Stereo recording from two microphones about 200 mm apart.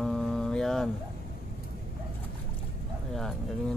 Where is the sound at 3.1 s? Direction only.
Centre (ahead or behind).